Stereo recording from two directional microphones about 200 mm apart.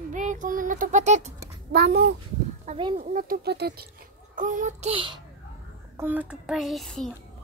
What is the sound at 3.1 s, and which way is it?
Speech, 45° right (ahead or behind).